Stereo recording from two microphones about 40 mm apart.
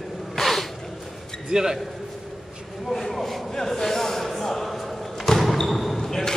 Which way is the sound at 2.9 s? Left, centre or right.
Centre.